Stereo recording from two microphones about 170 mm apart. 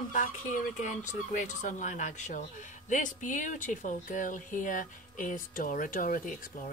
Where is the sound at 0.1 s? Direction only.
50° left (ahead or behind).